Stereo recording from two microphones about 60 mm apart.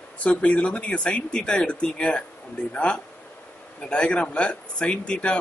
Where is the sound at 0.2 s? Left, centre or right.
Left.